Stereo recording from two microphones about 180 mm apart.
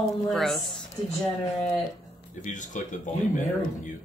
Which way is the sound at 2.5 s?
45° left (ahead or behind).